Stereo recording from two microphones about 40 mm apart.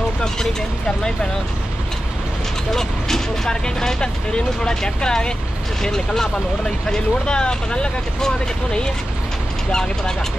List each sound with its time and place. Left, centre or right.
0.2 s speech: centre
2.7 s speech: centre
9.7 s speech: centre